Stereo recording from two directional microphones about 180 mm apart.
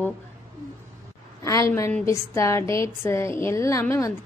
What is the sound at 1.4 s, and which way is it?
A woman's voice, 15° left (ahead or behind).